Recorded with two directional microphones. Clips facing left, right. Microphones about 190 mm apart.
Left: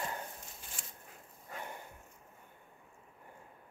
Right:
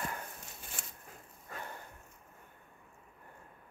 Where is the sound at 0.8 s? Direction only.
55° right (ahead or behind).